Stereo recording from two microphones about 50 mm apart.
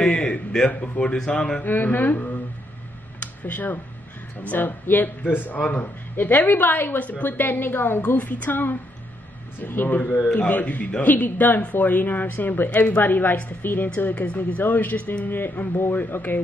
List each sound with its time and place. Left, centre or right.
0.0 s a sound: left
0.7 s a woman's voice: left
1.6 s speech: left
3.2 s a sound: left
4.4 s speech: left
4.6 s a woman's voice: left
8.2 s speech: left
10.3 s speech: left
13.9 s a woman's voice: left